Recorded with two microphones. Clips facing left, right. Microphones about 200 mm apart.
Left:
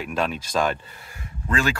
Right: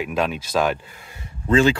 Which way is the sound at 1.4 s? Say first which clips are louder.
Right 8 dB; 25° right (ahead or behind).